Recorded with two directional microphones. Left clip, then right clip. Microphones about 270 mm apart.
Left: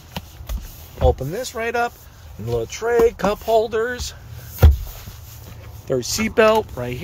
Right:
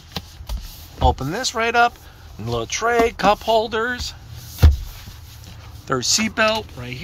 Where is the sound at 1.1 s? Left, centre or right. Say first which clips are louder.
Even; centre.